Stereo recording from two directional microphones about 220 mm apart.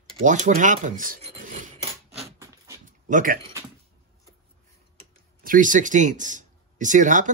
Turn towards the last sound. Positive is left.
turn(degrees=-35)  # may be behind; listen again after turning